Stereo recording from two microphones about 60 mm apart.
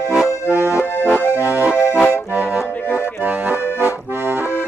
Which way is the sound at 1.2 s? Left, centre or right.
Left.